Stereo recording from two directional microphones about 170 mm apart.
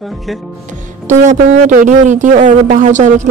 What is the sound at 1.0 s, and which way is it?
A woman's voice, 45° right (ahead or behind).